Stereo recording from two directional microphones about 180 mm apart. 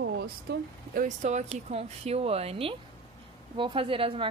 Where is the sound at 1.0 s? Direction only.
40° right (ahead or behind).